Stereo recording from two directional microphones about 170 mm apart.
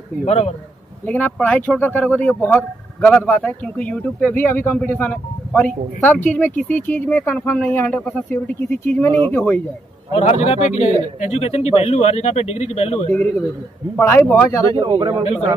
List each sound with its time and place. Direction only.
0.2 s a man's voice: 40° left (ahead or behind)
1.0 s speech: 10° left (ahead or behind)
10.4 s a man's voice: 40° left (ahead or behind)
13.9 s speech: 10° left (ahead or behind)
14.8 s speech: 25° right (ahead or behind)